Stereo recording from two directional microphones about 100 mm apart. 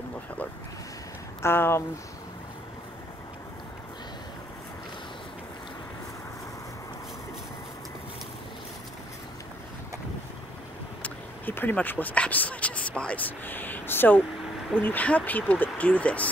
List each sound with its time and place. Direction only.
1.4 s speech: 25° left (ahead or behind)
11.0 s speech: 20° left (ahead or behind)